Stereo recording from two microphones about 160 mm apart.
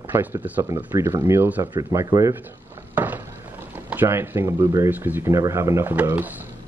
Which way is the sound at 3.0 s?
10° right (ahead or behind).